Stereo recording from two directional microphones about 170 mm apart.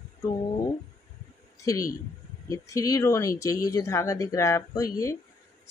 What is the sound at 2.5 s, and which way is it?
Speech, 20° left (ahead or behind).